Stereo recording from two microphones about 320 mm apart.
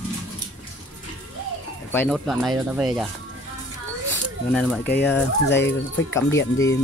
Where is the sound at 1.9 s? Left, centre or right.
Centre.